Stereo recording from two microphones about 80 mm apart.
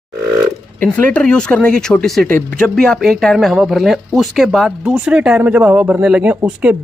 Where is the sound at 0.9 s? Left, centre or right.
Centre.